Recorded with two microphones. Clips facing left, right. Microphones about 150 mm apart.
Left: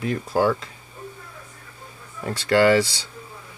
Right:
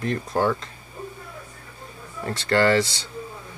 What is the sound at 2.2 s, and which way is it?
Speech, 10° left (ahead or behind).